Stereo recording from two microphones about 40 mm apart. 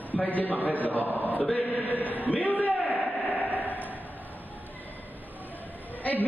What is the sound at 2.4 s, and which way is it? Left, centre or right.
Speech, left.